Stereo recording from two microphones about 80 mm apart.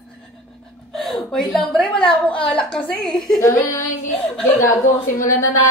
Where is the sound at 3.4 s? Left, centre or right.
Left.